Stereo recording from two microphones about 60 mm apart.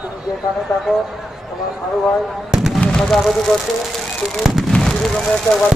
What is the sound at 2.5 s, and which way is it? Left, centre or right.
Fireworks, centre.